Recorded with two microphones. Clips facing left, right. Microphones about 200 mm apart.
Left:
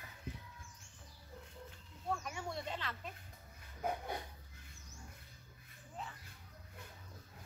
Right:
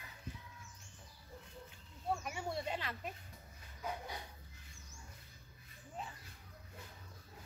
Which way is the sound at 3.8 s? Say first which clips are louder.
Left 4 dB; 55° left (ahead or behind).